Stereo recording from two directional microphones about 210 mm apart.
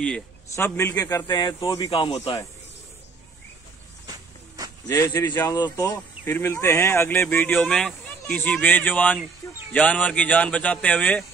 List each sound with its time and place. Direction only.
0.0 s speech: 5° left (ahead or behind); by 2.3 s 25° left (ahead or behind)
4.8 s speech: 15° left (ahead or behind)